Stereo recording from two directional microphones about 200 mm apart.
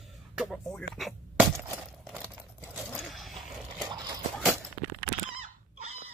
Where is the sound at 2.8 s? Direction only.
Centre (ahead or behind).